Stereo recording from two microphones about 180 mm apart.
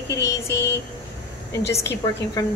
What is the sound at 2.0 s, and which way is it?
Speech, 20° left (ahead or behind).